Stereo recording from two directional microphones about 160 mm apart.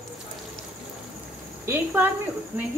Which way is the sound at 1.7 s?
15° right (ahead or behind).